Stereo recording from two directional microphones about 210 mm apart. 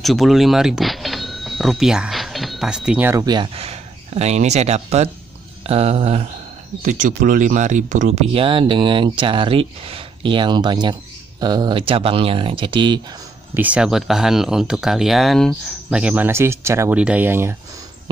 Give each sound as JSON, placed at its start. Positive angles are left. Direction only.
{"t": 0.0, "sound": "speech", "side_deg": 0}
{"t": 13.6, "sound": "speech", "side_deg": -5}